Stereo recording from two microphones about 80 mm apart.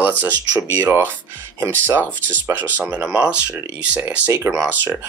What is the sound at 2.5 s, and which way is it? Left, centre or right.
Speech, centre.